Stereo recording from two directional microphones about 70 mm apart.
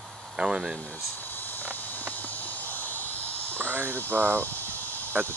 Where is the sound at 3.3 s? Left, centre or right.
Right.